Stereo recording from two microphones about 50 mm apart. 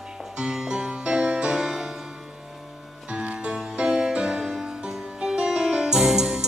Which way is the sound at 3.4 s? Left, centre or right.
Centre.